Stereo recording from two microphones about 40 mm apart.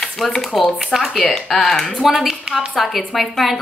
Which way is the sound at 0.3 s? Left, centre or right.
Centre.